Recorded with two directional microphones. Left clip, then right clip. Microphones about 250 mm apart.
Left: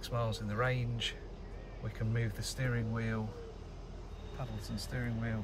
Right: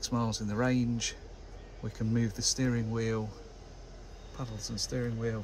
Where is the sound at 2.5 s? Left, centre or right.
Right.